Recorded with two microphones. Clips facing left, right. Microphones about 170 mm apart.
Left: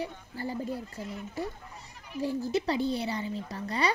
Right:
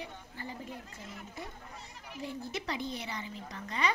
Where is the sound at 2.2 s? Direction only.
35° left (ahead or behind).